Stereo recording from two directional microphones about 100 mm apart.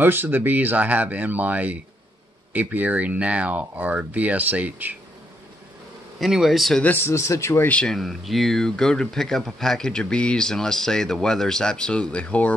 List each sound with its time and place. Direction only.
0.0 s speech: 20° right (ahead or behind)
6.1 s speech: 5° right (ahead or behind)
6.8 s speech: 20° left (ahead or behind)
7.6 s speech: 10° left (ahead or behind)